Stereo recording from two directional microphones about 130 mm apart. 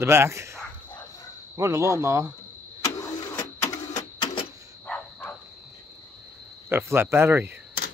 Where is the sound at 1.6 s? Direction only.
25° right (ahead or behind).